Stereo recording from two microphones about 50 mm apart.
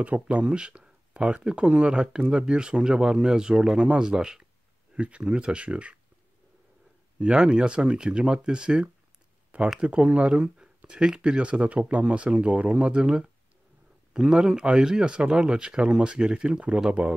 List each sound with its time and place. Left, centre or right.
0.0 s speech: right
4.9 s speech: right
7.2 s speech: centre